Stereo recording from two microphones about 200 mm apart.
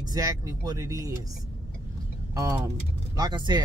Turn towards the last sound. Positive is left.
turn(degrees=-20)  # may be behind; listen again after turning